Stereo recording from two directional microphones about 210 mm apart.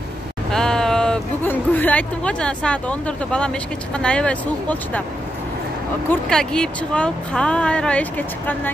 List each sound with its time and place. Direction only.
0.5 s speech: 5° left (ahead or behind)
6.0 s speech: 5° left (ahead or behind)